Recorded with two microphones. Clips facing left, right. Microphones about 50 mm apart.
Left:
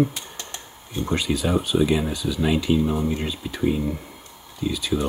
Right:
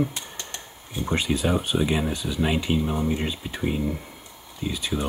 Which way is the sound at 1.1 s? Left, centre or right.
Right.